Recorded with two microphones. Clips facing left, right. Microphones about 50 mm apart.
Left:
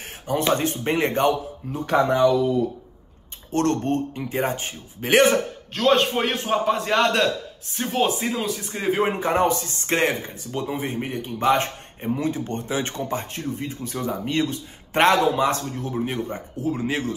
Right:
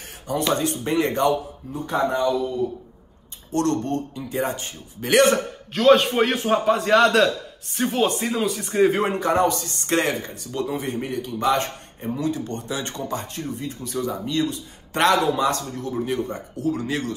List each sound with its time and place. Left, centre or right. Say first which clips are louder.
0.3 s speech: left 1 dB; left
1.7 s speech: left 3 dB; left
3.5 s speech: left 1 dB; left
5.8 s a man's voice: right 3 dB; centre
9.0 s a man's voice: right 1 dB; centre